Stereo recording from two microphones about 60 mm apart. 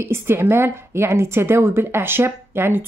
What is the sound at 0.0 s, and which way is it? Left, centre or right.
A woman's voice, right.